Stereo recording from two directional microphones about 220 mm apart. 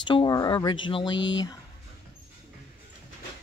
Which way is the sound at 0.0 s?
20° left (ahead or behind).